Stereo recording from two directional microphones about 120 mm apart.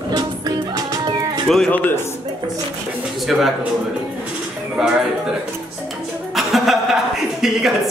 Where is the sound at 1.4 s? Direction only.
Centre (ahead or behind).